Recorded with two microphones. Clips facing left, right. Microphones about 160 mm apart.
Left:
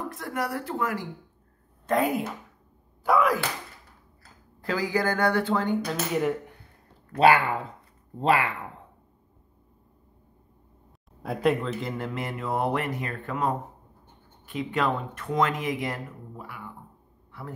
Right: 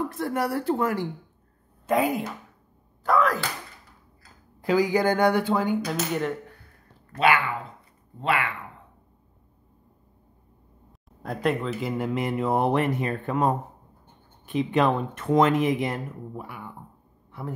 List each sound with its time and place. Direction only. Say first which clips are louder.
0.1 s speech: right 4 dB; 30° right (ahead or behind)
1.9 s speech: right 1 dB; centre (ahead or behind)
4.6 s speech: right 5 dB; 15° right (ahead or behind)
7.2 s speech: left 3 dB; 35° left (ahead or behind)
11.2 s speech: left 1 dB; centre (ahead or behind)
12.0 s speech: right 6 dB; 20° right (ahead or behind)
17.3 s a sound: right 5 dB; 20° right (ahead or behind)